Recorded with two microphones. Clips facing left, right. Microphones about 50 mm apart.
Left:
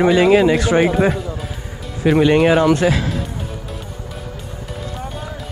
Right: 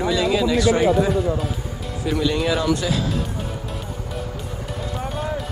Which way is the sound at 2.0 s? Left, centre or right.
Left.